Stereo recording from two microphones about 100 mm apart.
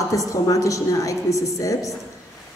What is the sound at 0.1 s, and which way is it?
A man's voice, 35° left (ahead or behind).